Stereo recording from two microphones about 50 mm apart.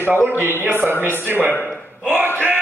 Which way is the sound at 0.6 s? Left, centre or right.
Right.